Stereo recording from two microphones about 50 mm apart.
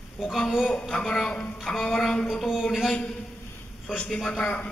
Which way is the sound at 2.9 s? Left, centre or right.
Centre.